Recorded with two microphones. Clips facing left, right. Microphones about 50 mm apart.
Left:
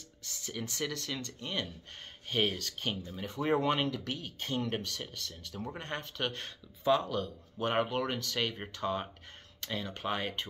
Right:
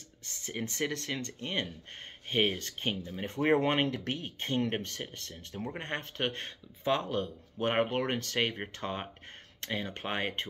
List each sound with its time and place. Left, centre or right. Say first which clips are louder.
0.2 s speech: right 2 dB; right
3.3 s speech: right 2 dB; right